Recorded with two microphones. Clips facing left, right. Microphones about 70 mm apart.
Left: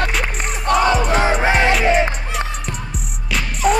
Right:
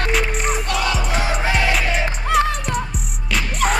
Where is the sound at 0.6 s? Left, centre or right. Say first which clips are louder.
Left 6 dB; left.